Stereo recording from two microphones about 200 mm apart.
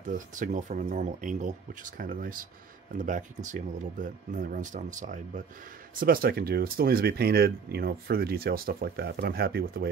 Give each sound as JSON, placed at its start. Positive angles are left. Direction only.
{"t": 0.3, "sound": "speech", "side_deg": -40}